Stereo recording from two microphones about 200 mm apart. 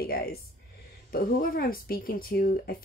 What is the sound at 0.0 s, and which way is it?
Speech, 50° left (ahead or behind).